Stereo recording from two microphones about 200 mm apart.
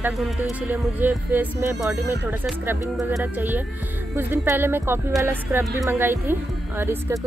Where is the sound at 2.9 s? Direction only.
5° right (ahead or behind).